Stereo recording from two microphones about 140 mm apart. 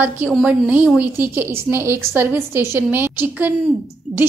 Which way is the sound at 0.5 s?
10° right (ahead or behind).